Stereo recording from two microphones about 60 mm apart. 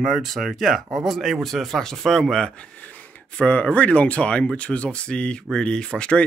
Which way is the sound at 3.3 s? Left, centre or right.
Centre.